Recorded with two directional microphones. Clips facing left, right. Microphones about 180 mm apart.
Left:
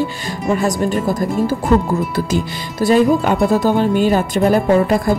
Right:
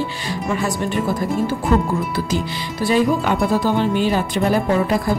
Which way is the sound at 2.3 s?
45° left (ahead or behind).